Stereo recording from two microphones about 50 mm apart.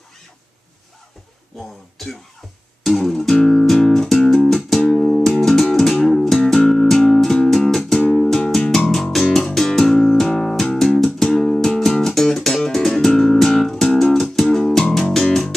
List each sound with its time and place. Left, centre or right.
2.8 s music: centre
4.8 s music: left
5.4 s music: centre